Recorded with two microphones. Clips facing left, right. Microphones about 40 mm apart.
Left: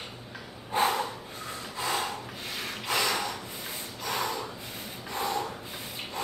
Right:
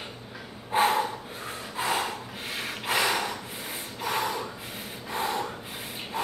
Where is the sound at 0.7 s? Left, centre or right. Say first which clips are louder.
Right 3 dB; right.